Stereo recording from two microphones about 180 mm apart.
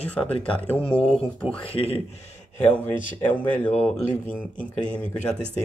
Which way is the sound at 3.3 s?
10° left (ahead or behind).